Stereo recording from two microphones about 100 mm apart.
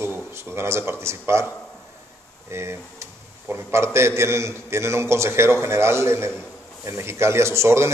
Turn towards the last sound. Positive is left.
turn(degrees=-25)  # may be behind; listen again after turning